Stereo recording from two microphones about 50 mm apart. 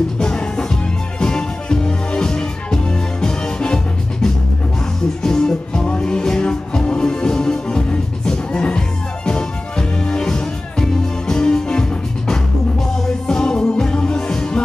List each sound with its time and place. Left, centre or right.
0.2 s music: centre